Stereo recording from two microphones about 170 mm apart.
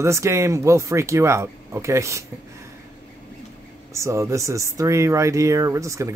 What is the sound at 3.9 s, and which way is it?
Speech, 15° right (ahead or behind).